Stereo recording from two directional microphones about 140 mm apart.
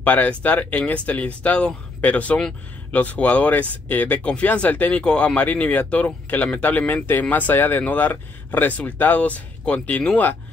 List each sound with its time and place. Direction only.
0.0 s speech: 10° left (ahead or behind)